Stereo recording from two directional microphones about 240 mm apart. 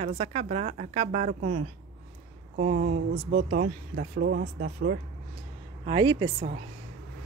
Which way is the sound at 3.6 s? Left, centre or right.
Right.